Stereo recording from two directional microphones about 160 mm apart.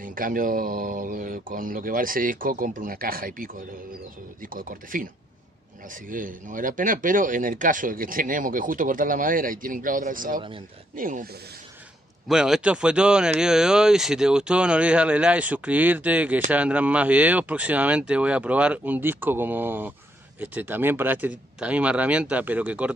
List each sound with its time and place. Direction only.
0.0 s speech: 60° right (ahead or behind)
12.3 s speech: 5° right (ahead or behind)